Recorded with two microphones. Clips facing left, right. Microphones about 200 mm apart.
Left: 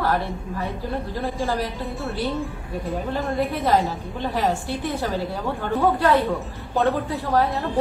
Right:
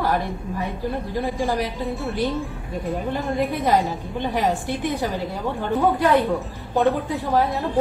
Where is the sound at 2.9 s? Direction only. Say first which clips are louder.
Right 1 dB; centre (ahead or behind).